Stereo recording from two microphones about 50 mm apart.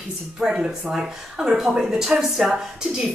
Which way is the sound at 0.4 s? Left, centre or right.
Centre.